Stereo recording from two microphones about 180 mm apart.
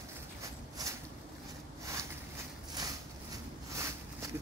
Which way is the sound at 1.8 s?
15° right (ahead or behind).